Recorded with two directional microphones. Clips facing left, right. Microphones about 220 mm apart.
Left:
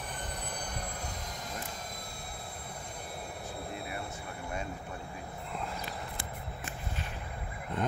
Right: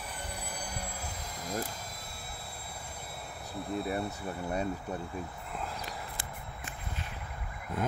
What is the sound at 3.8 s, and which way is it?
Speech, 35° right (ahead or behind).